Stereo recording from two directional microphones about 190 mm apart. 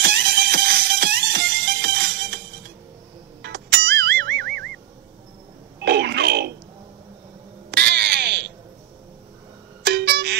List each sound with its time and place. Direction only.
0.0 s music: 60° right (ahead or behind)
3.4 s music: 60° right (ahead or behind)
5.8 s wail: 60° right (ahead or behind)
7.7 s crow: 60° right (ahead or behind)
9.8 s music: 65° right (ahead or behind)